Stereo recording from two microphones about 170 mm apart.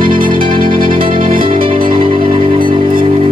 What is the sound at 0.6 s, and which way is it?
Music, 55° right (ahead or behind).